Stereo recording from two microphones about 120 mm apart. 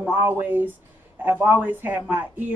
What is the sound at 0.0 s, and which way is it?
Speech, 15° right (ahead or behind).